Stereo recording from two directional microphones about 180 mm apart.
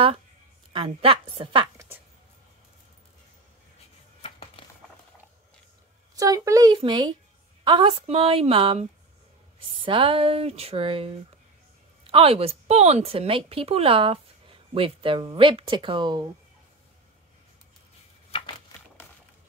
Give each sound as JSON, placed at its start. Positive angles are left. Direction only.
{"t": 0.7, "sound": "speech", "side_deg": -30}
{"t": 4.2, "sound": "a sound", "side_deg": 30}
{"t": 6.1, "sound": "a woman's voice", "side_deg": -20}
{"t": 9.8, "sound": "a woman's voice", "side_deg": -30}
{"t": 12.1, "sound": "a woman's voice", "side_deg": -30}